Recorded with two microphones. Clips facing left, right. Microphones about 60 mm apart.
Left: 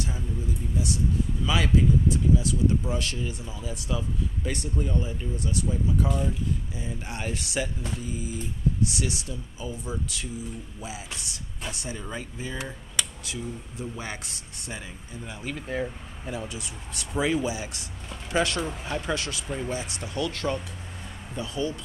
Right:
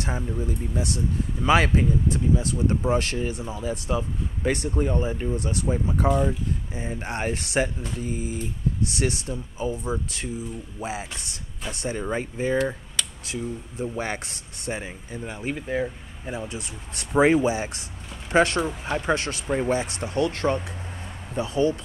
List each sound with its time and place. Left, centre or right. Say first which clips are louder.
0.0 s speech: right 4 dB; right
8.0 s a sound: right 4 dB; right
8.8 s speech: right 3 dB; right
13.7 s speech: right 8 dB; right
15.6 s speech: right 3 dB; centre
16.3 s speech: right 2 dB; right